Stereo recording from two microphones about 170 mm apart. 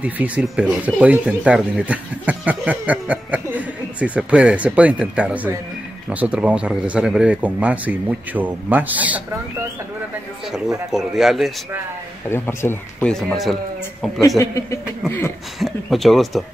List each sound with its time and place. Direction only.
0.0 s speech: 10° right (ahead or behind)
10.5 s speech: centre (ahead or behind)
12.3 s speech: 15° left (ahead or behind)
13.1 s speech: centre (ahead or behind)
14.4 s speech: 15° left (ahead or behind)
15.6 s speech: centre (ahead or behind)